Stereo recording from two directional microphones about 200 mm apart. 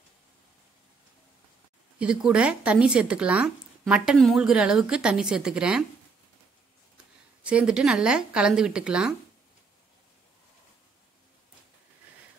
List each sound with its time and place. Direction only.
2.0 s speech: 5° right (ahead or behind)
7.4 s speech: 5° right (ahead or behind)